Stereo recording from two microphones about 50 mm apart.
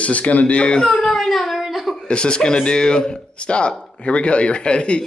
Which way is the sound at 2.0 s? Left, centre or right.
Centre.